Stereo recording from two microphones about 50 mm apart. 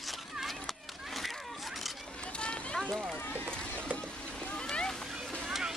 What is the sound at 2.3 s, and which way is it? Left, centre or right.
Run, centre.